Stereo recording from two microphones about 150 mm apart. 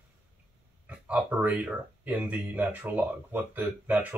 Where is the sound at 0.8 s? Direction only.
10° right (ahead or behind).